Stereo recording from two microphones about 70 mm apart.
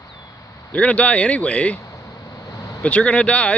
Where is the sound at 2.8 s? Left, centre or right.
Centre.